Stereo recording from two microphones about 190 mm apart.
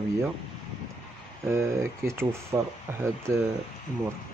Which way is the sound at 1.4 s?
15° right (ahead or behind).